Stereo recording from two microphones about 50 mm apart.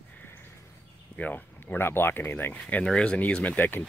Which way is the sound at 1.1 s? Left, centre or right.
Left.